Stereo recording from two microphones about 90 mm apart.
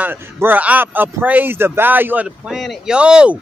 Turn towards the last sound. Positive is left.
turn(degrees=-10)  # may be behind; listen again after turning